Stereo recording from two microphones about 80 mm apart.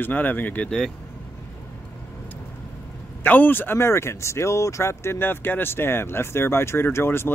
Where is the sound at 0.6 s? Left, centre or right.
Centre.